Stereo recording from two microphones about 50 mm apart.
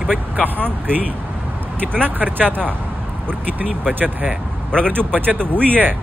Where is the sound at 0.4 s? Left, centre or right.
Right.